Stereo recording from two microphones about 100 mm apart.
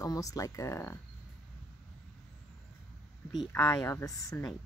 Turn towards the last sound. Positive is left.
turn(degrees=35)  # may be behind; listen again after turning